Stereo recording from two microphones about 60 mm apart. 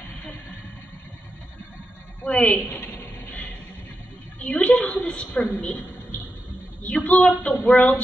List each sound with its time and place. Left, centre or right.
2.2 s a woman's voice: left
4.4 s a woman's voice: left
6.8 s a woman's voice: left